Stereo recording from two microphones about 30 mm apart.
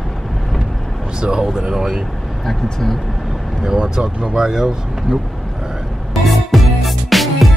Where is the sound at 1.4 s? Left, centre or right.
Centre.